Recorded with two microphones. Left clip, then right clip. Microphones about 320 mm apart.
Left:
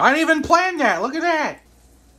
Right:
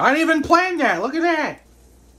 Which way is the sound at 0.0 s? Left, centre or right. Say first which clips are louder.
Left 1 dB; left.